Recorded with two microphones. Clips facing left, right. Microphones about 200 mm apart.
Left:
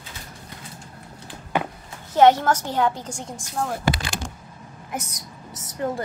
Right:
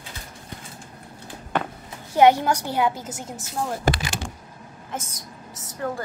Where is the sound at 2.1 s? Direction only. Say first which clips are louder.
Left 1 dB; 10° right (ahead or behind).